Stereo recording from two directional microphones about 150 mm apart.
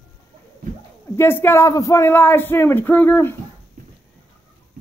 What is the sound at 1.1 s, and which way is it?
Speech, 15° left (ahead or behind).